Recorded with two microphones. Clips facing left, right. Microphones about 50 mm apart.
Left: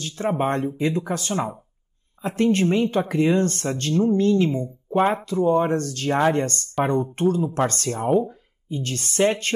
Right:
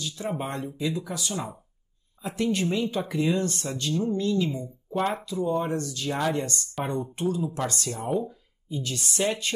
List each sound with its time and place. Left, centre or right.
0.0 s speech: left